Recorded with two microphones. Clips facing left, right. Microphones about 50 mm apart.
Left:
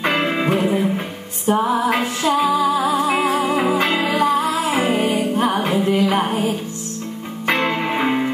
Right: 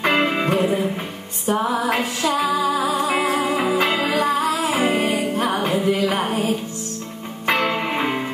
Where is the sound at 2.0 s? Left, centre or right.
Centre.